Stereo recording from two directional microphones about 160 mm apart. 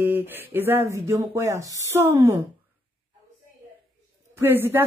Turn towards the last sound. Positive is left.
turn(degrees=-15)  # may be behind; listen again after turning